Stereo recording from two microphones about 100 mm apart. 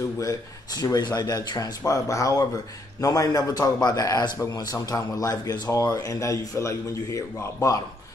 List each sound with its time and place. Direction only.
0.2 s speech: 35° left (ahead or behind)